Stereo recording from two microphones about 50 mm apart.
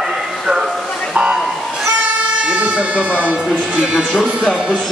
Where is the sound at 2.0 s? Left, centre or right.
Right.